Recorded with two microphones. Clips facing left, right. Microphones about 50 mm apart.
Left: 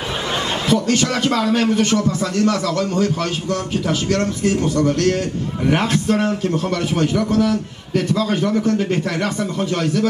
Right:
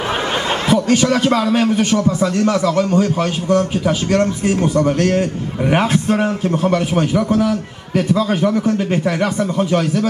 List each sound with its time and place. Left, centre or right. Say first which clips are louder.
0.7 s a man's voice: right 3 dB; right